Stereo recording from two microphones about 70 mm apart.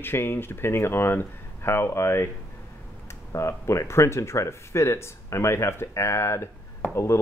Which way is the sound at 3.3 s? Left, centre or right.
Left.